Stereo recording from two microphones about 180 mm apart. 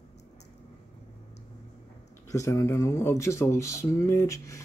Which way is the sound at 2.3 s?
20° left (ahead or behind).